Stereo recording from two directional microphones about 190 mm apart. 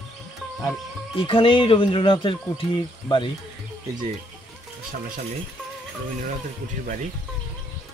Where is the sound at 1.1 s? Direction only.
30° left (ahead or behind).